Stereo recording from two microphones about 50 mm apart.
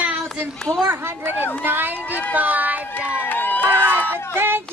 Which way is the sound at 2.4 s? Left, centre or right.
Right.